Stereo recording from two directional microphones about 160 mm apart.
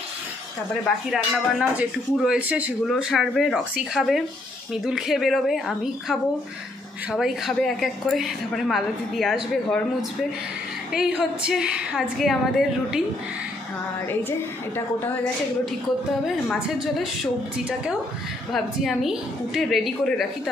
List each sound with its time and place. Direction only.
0.8 s a woman's voice: centre (ahead or behind)
10.9 s a woman's voice: 5° right (ahead or behind)
16.8 s a woman's voice: centre (ahead or behind)